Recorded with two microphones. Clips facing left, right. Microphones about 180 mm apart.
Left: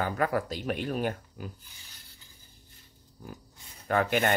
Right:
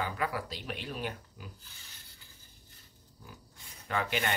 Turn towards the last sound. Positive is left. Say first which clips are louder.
# left 7 dB
turn(degrees=50)  # may be behind; listen again after turning